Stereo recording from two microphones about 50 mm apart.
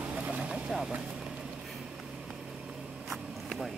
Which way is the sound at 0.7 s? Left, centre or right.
Centre.